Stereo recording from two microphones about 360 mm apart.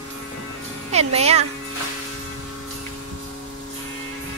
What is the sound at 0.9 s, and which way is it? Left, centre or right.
Speech, centre.